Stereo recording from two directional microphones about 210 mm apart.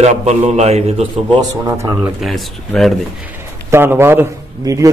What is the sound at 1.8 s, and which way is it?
Speech, 15° right (ahead or behind).